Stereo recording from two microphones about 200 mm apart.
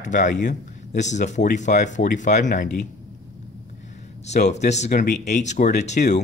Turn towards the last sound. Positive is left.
turn(degrees=35)  # may be behind; listen again after turning